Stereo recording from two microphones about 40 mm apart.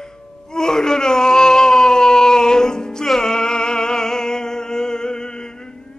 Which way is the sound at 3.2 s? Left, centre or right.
Centre.